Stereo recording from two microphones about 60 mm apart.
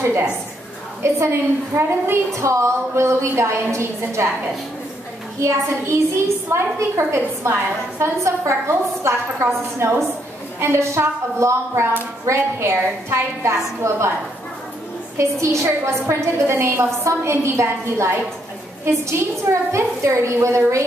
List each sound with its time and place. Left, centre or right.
1.0 s a woman's voice: right
5.4 s a woman's voice: right
15.4 s a woman's voice: right